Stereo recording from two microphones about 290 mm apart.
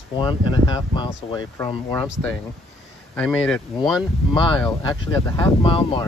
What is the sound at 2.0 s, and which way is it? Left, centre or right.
Speech, centre.